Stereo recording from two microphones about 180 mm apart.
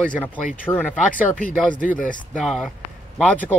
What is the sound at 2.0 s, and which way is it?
Speech, 45° left (ahead or behind).